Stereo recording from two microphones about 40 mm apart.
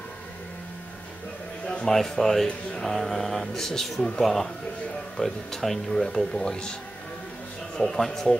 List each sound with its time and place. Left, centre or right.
1.9 s speech: centre
2.4 s speech: centre
2.9 s speech: centre
7.8 s speech: centre